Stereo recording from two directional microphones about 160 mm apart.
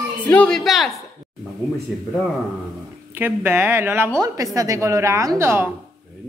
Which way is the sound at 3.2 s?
15° right (ahead or behind).